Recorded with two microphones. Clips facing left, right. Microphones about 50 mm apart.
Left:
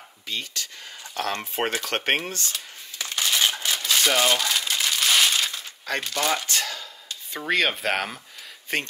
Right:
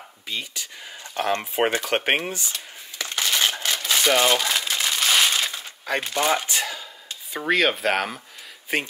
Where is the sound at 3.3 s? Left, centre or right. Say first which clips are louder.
Even; centre.